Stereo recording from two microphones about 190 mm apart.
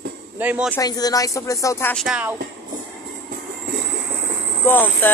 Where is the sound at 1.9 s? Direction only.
5° right (ahead or behind).